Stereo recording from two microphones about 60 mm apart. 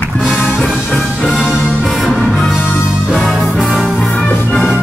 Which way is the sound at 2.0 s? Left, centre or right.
Centre.